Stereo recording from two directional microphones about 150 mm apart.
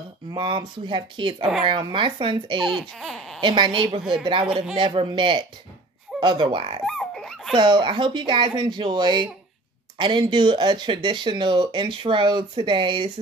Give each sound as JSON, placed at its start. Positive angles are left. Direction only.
{"t": 0.3, "sound": "speech", "side_deg": -35}
{"t": 2.6, "sound": "speech", "side_deg": 0}
{"t": 3.3, "sound": "speech", "side_deg": -30}
{"t": 6.9, "sound": "a sound", "side_deg": 0}
{"t": 7.5, "sound": "speech", "side_deg": -30}